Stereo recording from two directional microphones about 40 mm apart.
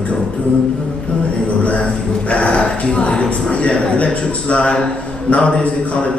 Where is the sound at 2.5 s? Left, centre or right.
Centre.